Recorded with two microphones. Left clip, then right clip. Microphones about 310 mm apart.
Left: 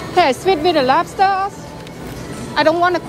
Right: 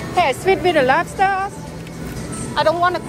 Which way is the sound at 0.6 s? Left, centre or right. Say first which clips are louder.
Left 1 dB; centre.